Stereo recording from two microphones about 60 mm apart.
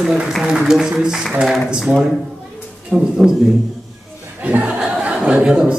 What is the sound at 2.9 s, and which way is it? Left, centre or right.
Speech, right.